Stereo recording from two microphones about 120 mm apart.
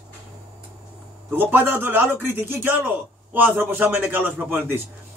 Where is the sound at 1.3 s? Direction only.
15° right (ahead or behind).